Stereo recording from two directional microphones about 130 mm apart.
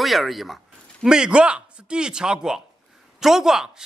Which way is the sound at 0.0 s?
Centre (ahead or behind).